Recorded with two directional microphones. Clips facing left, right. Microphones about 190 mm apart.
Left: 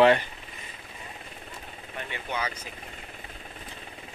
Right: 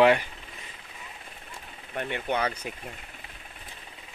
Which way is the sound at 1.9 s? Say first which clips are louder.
Right 5 dB; 55° right (ahead or behind).